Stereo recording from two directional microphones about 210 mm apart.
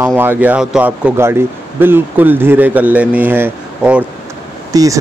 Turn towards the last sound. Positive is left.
turn(degrees=-15)  # may be behind; listen again after turning